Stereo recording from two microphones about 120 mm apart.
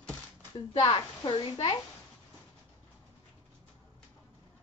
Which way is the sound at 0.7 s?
40° left (ahead or behind).